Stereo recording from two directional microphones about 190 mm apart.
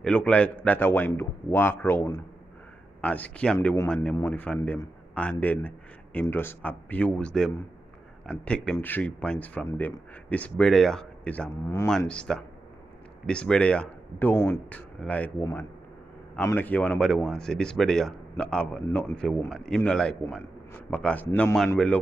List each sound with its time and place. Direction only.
0.0 s speech: 5° left (ahead or behind)
3.5 s speech: 15° left (ahead or behind)
3.9 s a man's voice: 5° left (ahead or behind)
12.1 s speech: 5° left (ahead or behind)
16.3 s speech: 10° left (ahead or behind)